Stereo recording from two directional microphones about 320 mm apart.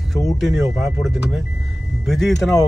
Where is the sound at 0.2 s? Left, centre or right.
Centre.